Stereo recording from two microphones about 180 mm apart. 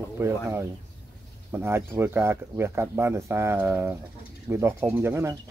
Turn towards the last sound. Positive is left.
turn(degrees=-15)  # may be behind; listen again after turning